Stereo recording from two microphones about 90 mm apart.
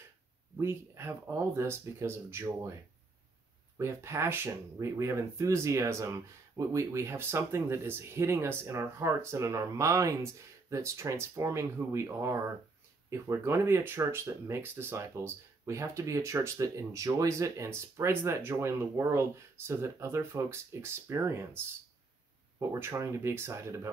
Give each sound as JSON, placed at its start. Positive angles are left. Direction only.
{"t": 0.6, "sound": "speech", "side_deg": -30}
{"t": 3.7, "sound": "speech", "side_deg": -30}
{"t": 22.6, "sound": "speech", "side_deg": -30}